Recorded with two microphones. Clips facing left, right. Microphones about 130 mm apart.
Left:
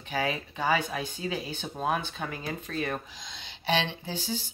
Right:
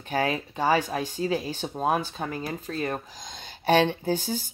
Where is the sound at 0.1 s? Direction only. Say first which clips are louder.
Right 4 dB; 45° right (ahead or behind).